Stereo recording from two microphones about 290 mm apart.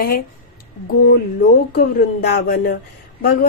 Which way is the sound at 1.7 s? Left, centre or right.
Left.